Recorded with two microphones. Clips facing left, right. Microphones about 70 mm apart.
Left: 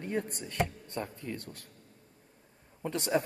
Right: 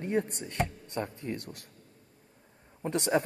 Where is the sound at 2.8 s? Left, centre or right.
Right.